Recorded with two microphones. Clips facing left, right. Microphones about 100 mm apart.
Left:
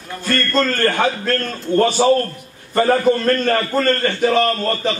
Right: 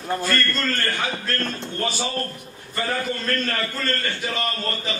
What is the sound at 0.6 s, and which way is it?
A man's voice, 50° left (ahead or behind).